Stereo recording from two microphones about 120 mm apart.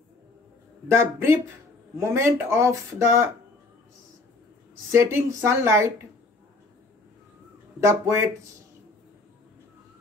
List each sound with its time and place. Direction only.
0.8 s speech: 20° right (ahead or behind)
4.9 s speech: 20° right (ahead or behind)
7.8 s speech: 25° right (ahead or behind)